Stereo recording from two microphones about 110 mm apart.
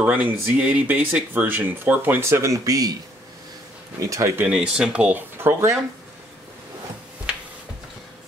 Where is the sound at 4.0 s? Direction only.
30° right (ahead or behind).